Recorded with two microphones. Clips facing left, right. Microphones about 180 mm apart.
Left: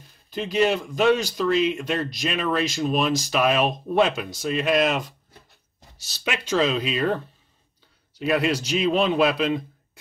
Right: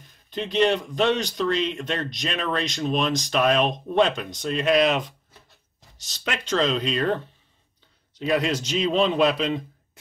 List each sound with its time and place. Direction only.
0.3 s speech: 5° left (ahead or behind)